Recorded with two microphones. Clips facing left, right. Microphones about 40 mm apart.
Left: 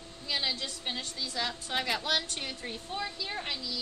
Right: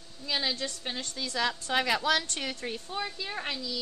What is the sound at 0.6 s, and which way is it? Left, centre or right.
A woman's voice, right.